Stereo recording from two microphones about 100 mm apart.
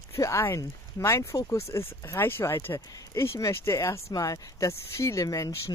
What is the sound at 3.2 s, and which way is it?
Speech, 25° left (ahead or behind).